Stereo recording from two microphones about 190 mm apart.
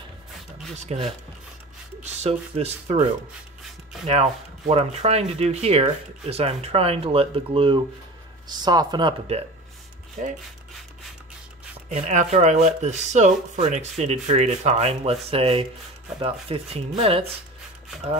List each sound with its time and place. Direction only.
0.8 s speech: 30° right (ahead or behind)
4.1 s speech: 35° right (ahead or behind)
10.2 s speech: 45° right (ahead or behind)
11.9 s speech: 40° right (ahead or behind)